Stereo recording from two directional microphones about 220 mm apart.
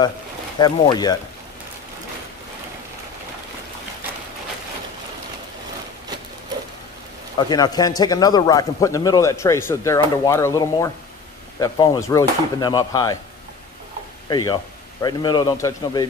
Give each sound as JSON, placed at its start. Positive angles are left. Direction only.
{"t": 0.6, "sound": "a man's voice", "side_deg": 20}
{"t": 7.3, "sound": "speech", "side_deg": 20}
{"t": 14.3, "sound": "a man's voice", "side_deg": 15}